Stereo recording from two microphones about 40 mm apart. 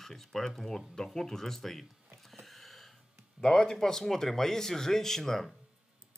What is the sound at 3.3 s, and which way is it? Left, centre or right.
Speech, centre.